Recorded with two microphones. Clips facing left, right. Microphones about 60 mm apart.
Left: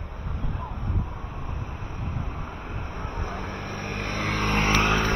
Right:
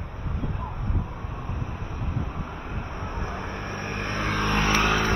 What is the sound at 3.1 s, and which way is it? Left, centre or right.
Vehicle, centre.